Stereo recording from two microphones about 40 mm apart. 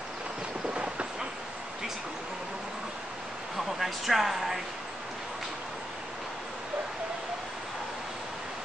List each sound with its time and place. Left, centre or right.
0.7 s train: right
3.5 s speech: centre